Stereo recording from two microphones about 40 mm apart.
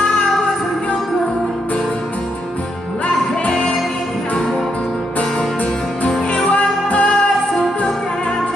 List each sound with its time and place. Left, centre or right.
6.4 s music: left
7.0 s music: centre